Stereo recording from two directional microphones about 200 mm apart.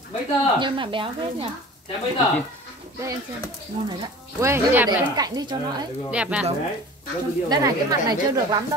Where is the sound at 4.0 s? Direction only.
15° right (ahead or behind).